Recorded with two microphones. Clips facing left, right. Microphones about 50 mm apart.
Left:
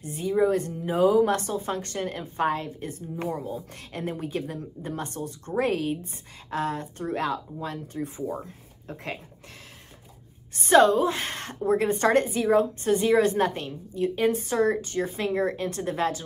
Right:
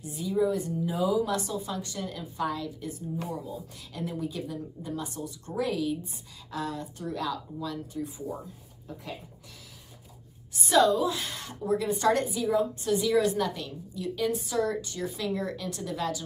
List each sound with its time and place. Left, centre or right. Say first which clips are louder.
0.0 s a woman's voice: left 4 dB; left
10.5 s a woman's voice: left 5 dB; left